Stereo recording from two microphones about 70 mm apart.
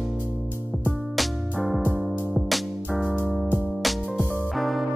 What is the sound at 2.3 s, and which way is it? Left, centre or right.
Music, centre.